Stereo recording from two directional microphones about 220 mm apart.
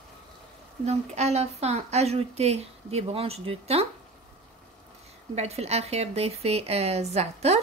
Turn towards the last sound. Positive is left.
turn(degrees=-30)  # may be behind; listen again after turning